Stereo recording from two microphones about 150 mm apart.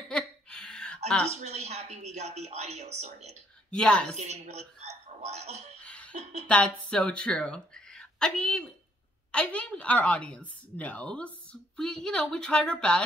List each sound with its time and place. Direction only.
0.1 s a sound: 5° left (ahead or behind)
1.3 s a woman's voice: 50° right (ahead or behind)
3.7 s a woman's voice: 5° left (ahead or behind)
4.2 s speech: 50° right (ahead or behind)
5.8 s laughter: 10° left (ahead or behind)
6.1 s a woman's voice: 45° right (ahead or behind)
6.4 s a woman's voice: 5° left (ahead or behind)